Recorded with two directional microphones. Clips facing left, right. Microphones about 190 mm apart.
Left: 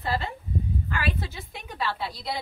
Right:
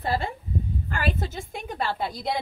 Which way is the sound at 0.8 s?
45° right (ahead or behind).